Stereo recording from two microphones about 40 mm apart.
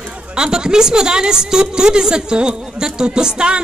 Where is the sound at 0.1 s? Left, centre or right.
Right.